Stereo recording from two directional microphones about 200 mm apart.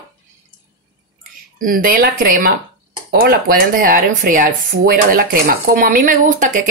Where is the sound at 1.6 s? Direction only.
45° right (ahead or behind).